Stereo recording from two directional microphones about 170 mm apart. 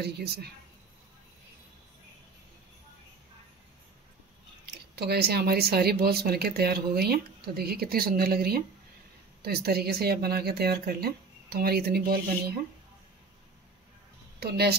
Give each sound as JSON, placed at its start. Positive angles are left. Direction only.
{"t": 0.0, "sound": "speech", "side_deg": -70}
{"t": 4.9, "sound": "speech", "side_deg": -70}
{"t": 14.4, "sound": "speech", "side_deg": -70}